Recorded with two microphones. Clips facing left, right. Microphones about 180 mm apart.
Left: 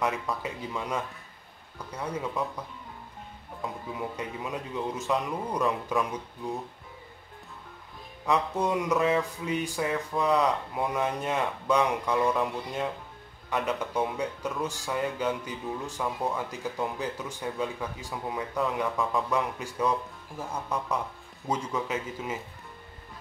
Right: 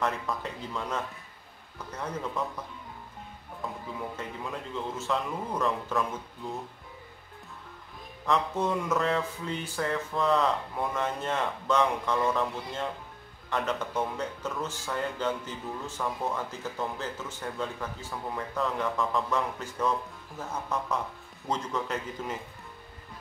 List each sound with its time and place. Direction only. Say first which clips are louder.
0.0 s speech: left 1 dB; 10° left (ahead or behind)
4.2 s speech: left 2 dB; 15° left (ahead or behind)
8.3 s speech: left 1 dB; 15° left (ahead or behind)